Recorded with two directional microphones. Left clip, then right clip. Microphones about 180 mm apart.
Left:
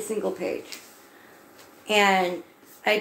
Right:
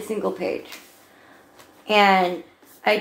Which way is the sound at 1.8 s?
10° left (ahead or behind).